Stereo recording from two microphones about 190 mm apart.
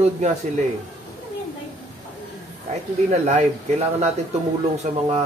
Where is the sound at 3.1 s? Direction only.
35° right (ahead or behind).